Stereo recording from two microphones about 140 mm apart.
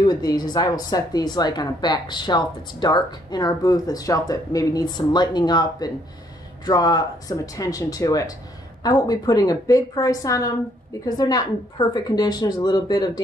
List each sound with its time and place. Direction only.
0.0 s speech: 30° left (ahead or behind)